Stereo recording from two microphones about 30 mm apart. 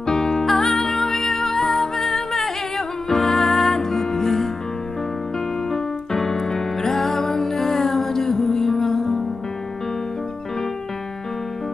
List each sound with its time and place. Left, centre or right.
0.0 s music: centre
5.7 s music: centre